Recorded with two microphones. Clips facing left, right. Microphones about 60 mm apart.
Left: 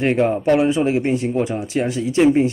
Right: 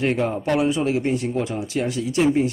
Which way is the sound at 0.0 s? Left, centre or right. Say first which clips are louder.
Left 5 dB; left.